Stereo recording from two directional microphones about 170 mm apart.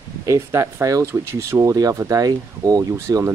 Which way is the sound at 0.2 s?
15° right (ahead or behind).